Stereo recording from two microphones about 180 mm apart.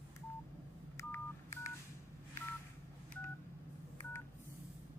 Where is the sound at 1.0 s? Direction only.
15° left (ahead or behind).